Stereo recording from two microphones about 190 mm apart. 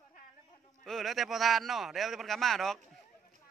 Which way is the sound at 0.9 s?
Centre (ahead or behind).